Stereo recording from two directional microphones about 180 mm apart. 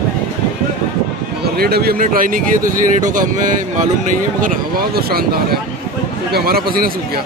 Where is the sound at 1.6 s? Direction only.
60° right (ahead or behind).